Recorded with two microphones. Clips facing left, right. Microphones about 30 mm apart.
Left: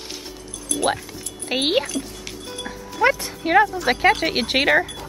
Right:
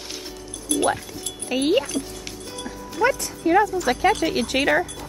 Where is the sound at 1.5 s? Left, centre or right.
Left.